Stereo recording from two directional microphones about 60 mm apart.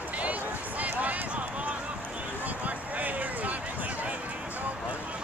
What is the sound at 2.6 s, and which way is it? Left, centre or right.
Basketball bounce, right.